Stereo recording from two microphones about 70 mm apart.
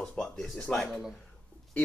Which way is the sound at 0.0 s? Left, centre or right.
Centre.